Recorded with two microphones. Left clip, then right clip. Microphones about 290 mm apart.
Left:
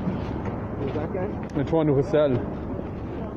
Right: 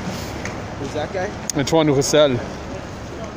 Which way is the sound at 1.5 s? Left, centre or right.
Right.